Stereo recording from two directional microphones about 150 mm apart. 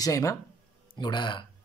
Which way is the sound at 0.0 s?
20° left (ahead or behind).